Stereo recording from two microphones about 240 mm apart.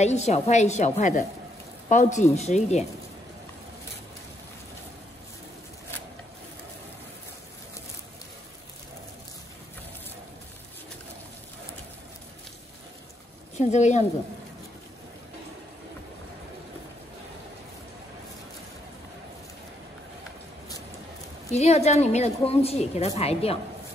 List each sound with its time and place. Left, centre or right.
0.0 s a woman's voice: left
13.6 s a woman's voice: left
21.5 s a woman's voice: left